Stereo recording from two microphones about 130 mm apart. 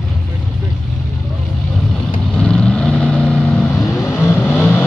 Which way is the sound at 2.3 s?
5° left (ahead or behind).